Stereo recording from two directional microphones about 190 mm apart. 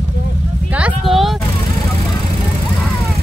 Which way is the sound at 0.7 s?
5° right (ahead or behind).